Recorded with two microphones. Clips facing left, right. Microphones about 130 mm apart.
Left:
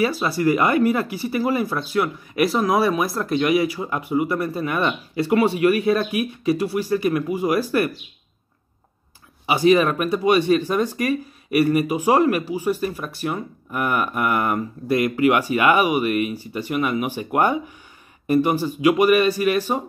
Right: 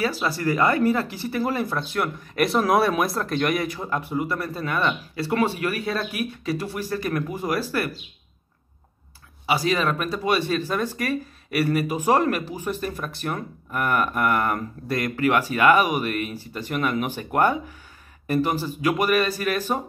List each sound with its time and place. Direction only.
0.0 s speech: 15° left (ahead or behind)
9.5 s speech: 20° left (ahead or behind)